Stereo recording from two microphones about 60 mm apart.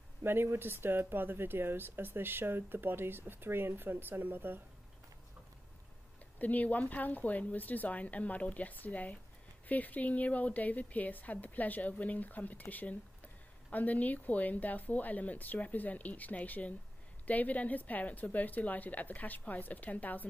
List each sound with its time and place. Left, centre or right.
0.2 s speech: right
6.4 s a woman's voice: left